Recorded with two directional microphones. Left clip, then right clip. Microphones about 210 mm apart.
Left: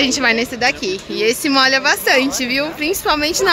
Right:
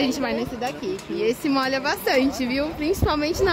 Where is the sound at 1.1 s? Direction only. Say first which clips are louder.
Left 8 dB; centre (ahead or behind).